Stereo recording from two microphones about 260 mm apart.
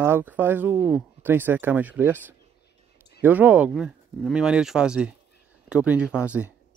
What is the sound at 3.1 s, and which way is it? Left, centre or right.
Speech, centre.